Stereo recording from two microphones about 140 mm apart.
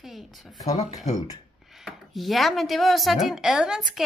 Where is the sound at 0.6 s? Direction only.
25° left (ahead or behind).